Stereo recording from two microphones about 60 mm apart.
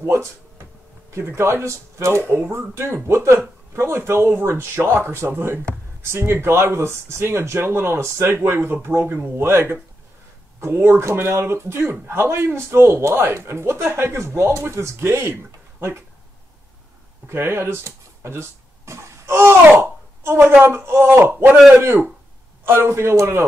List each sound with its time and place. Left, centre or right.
0.0 s a sound: right
1.2 s a man's voice: right
17.3 s speech: right
17.8 s a sound: right
20.5 s a man's voice: right
22.7 s speech: right